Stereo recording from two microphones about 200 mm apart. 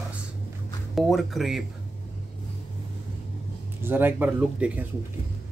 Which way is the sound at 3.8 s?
10° right (ahead or behind).